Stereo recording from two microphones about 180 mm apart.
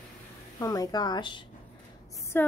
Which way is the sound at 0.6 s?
20° left (ahead or behind).